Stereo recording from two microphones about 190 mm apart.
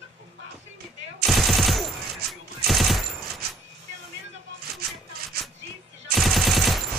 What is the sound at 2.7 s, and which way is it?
Fusillade, centre (ahead or behind).